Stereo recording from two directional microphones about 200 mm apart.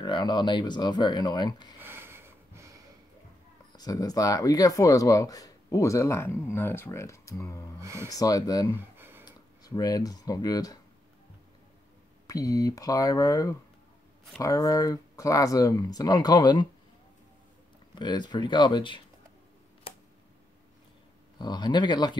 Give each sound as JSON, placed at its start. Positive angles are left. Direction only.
{"t": 0.0, "sound": "speech", "side_deg": 20}
{"t": 1.8, "sound": "sniff", "side_deg": -10}
{"t": 3.7, "sound": "speech", "side_deg": 20}
{"t": 7.8, "sound": "speech", "side_deg": -15}
{"t": 8.1, "sound": "speech", "side_deg": 20}
{"t": 8.9, "sound": "a sound", "side_deg": -10}
{"t": 9.2, "sound": "speech", "side_deg": 20}
{"t": 12.3, "sound": "speech", "side_deg": 20}
{"t": 17.9, "sound": "speech", "side_deg": 20}
{"t": 21.4, "sound": "speech", "side_deg": 20}